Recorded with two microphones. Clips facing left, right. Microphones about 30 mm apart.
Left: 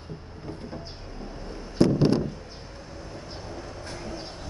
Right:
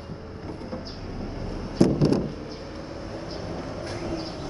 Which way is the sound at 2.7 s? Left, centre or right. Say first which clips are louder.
Right 3 dB; right.